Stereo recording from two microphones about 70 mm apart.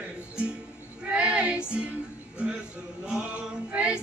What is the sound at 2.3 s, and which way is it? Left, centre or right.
Male singing, centre.